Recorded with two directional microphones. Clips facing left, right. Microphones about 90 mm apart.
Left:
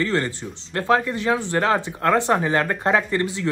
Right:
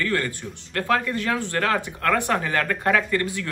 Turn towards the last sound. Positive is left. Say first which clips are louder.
# left 1 dB
turn(degrees=20)  # may be behind; listen again after turning